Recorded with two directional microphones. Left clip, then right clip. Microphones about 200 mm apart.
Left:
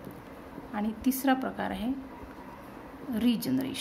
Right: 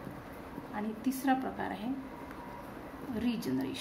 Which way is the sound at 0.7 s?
55° left (ahead or behind).